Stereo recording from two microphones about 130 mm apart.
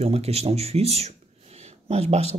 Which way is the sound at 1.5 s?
50° right (ahead or behind).